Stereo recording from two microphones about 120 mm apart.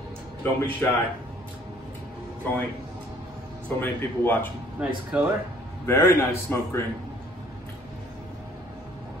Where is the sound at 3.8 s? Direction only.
15° left (ahead or behind).